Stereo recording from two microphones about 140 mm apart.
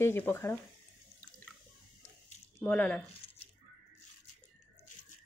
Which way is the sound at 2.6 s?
10° left (ahead or behind).